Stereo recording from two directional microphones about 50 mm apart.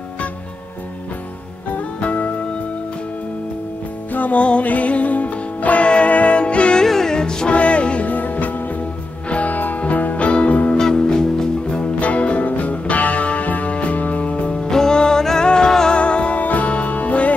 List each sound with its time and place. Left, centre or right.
1.7 s music: left
4.1 s music: left
6.8 s music: centre; by 10.8 s left
10.8 s music: centre
11.8 s music: left
14.7 s music: centre; by 17.3 s left